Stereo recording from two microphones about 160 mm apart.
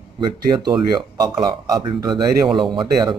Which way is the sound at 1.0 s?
30° right (ahead or behind).